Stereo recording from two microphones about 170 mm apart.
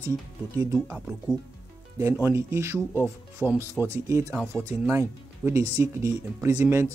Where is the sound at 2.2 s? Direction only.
15° right (ahead or behind).